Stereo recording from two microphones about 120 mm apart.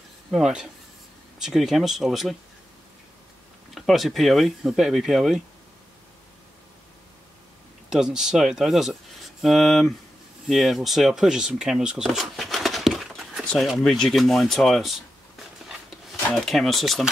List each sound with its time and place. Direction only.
0.3 s speech: 5° right (ahead or behind)
3.7 s speech: centre (ahead or behind)
7.9 s speech: 5° right (ahead or behind)
16.4 s speech: centre (ahead or behind)